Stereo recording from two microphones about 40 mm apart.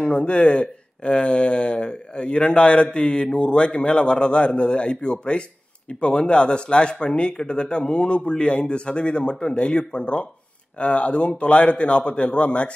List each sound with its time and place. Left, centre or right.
0.1 s speech: left